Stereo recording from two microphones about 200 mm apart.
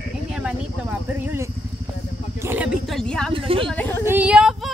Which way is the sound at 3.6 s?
10° left (ahead or behind).